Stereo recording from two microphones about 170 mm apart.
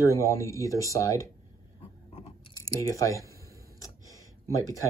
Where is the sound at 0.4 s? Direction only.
20° left (ahead or behind).